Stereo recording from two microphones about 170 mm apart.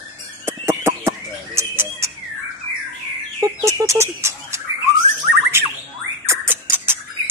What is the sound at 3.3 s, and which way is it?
Fowl, 20° right (ahead or behind).